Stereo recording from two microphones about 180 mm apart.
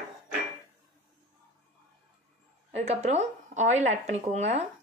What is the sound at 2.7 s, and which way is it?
Speech, 35° right (ahead or behind).